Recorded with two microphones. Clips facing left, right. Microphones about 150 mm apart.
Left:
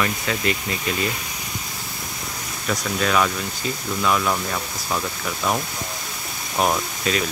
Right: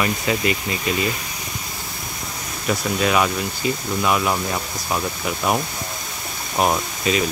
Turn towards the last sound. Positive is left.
turn(degrees=-5)  # may be behind; listen again after turning